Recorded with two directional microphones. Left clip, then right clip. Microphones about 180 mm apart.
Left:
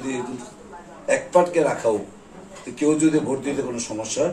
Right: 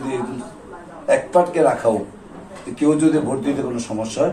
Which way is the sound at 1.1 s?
10° left (ahead or behind).